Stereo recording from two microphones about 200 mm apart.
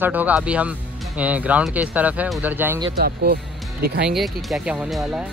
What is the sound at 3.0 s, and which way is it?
Speech, 50° right (ahead or behind).